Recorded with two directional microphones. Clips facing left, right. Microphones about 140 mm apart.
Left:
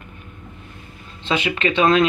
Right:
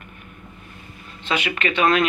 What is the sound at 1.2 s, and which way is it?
Speech, 25° left (ahead or behind).